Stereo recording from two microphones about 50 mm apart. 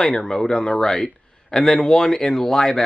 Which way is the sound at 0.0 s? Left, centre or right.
Centre.